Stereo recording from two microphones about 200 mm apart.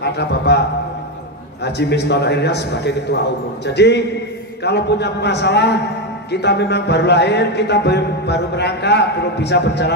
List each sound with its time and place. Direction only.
0.0 s speech: 55° left (ahead or behind)